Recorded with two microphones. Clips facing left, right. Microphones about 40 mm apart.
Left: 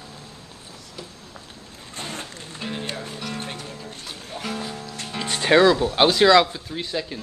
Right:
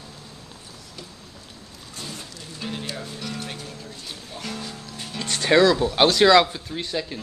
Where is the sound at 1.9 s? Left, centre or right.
Left.